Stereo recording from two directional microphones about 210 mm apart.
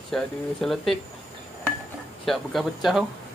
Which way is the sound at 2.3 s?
Centre (ahead or behind).